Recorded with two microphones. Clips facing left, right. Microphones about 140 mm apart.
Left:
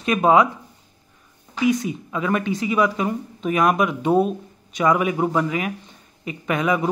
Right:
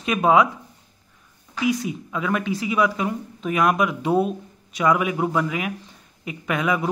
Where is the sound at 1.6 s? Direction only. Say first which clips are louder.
Left 3 dB; centre (ahead or behind).